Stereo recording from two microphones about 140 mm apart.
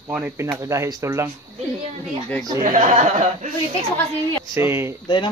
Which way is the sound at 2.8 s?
55° right (ahead or behind).